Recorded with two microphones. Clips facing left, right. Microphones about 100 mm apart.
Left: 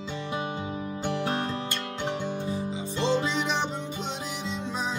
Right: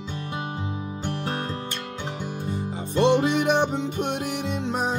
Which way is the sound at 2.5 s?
60° right (ahead or behind).